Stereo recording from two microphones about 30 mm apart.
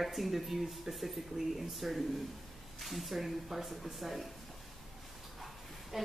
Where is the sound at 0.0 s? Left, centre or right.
Centre.